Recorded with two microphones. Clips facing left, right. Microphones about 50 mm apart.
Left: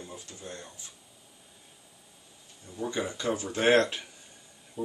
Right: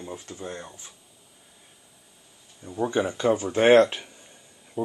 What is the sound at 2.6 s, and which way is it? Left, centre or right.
Speech, right.